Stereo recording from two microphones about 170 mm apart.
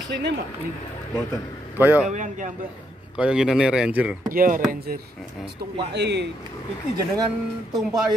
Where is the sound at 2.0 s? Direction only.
45° right (ahead or behind).